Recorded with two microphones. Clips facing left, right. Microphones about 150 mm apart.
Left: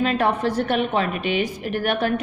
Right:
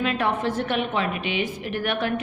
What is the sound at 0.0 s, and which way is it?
A woman's voice, 35° left (ahead or behind).